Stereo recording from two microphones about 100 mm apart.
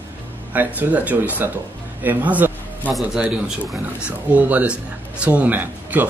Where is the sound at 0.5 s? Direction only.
15° right (ahead or behind).